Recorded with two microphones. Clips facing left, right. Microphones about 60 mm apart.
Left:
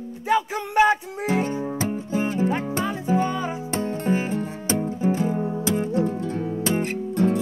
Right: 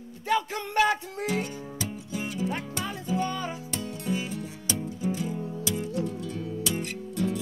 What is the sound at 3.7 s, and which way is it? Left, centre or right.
Music, left.